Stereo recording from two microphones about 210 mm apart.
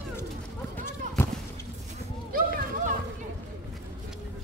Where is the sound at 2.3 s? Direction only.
45° right (ahead or behind).